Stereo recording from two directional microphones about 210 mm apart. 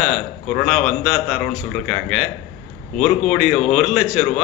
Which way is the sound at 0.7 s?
Centre (ahead or behind).